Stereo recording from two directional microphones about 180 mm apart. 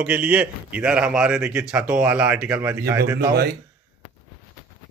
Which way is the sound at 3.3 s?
60° right (ahead or behind).